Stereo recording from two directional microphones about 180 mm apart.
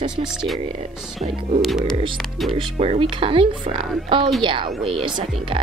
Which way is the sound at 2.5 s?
35° right (ahead or behind).